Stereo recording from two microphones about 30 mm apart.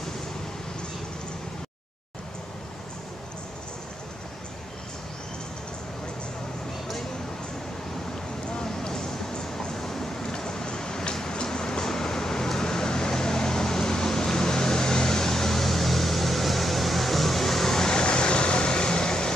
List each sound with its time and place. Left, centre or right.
8.8 s a sound: left
10.3 s vehicle: left
17.9 s vehicle: left